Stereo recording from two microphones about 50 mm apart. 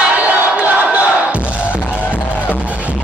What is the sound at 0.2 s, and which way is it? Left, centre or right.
Crowd, right.